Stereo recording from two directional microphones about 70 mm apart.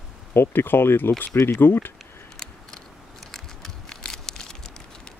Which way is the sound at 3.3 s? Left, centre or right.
Centre.